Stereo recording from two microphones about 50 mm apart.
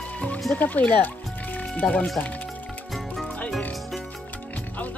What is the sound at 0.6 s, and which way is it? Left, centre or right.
Speech, left.